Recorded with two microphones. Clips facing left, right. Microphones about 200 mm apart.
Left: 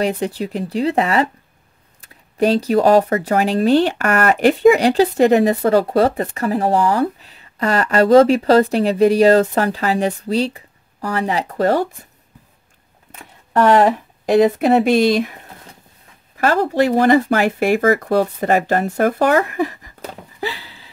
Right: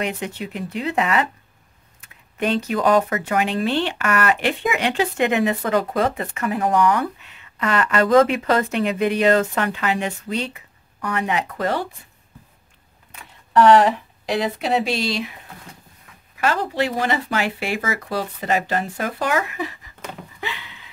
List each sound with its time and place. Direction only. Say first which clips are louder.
0.0 s speech: left 7 dB; 35° left (ahead or behind)
13.2 s speech: even; 45° left (ahead or behind)
16.3 s speech: left 6 dB; 40° left (ahead or behind)